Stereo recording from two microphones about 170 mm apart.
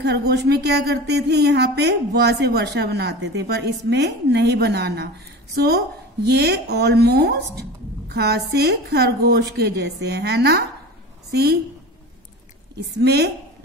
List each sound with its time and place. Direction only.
0.0 s a woman's voice: 75° right (ahead or behind)
12.7 s a woman's voice: 75° right (ahead or behind)